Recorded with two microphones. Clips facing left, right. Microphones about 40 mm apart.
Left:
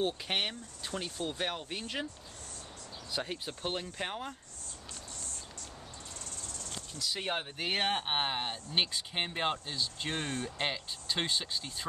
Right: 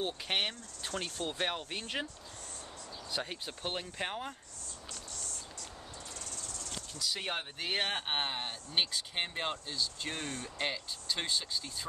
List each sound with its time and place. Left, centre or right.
0.0 s speech: centre
3.1 s speech: centre
5.1 s music: left
7.0 s speech: centre; by 11.9 s left